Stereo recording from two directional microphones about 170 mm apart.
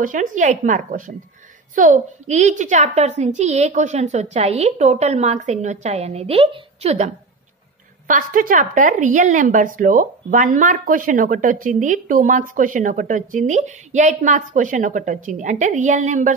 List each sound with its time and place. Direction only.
0.0 s a woman's voice: 50° right (ahead or behind)
8.1 s a woman's voice: 55° right (ahead or behind)